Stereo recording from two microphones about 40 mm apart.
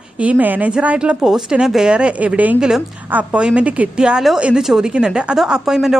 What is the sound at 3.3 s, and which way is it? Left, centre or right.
Speech, right.